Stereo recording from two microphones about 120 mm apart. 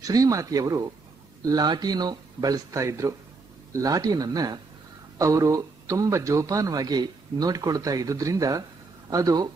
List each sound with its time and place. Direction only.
0.0 s a man's voice: 30° right (ahead or behind)